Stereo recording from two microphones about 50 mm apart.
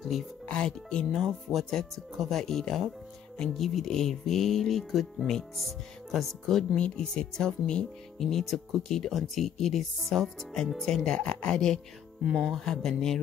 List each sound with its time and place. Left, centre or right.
0.0 s speech: centre
0.5 s speech: centre
1.1 s speech: centre
6.7 s speech: centre
8.2 s speech: centre
11.1 s speech: centre